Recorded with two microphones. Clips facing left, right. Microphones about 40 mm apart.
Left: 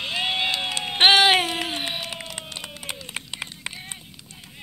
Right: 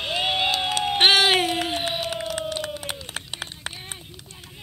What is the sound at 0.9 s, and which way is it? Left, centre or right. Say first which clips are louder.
Music: left 2 dB; centre.